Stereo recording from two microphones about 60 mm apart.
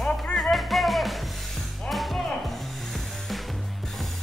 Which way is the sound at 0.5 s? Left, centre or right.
Centre.